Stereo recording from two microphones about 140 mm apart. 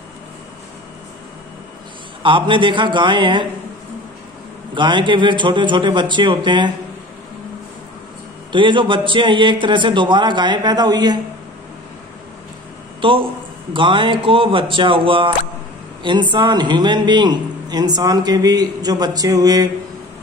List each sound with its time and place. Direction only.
2.2 s a man's voice: 35° right (ahead or behind)
4.7 s a man's voice: 35° right (ahead or behind)
8.5 s a man's voice: 35° right (ahead or behind)
13.0 s a man's voice: 40° right (ahead or behind)